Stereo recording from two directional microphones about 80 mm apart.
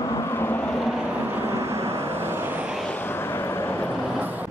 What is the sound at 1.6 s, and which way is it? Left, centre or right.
Vehicle, right.